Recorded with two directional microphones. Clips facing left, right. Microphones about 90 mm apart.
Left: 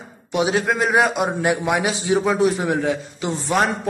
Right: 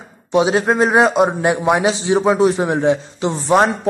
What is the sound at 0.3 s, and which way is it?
A man's voice, 30° right (ahead or behind).